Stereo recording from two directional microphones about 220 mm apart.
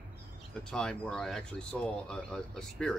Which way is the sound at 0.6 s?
5° left (ahead or behind).